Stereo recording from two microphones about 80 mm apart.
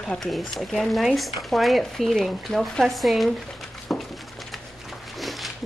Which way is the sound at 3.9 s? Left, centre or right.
Centre.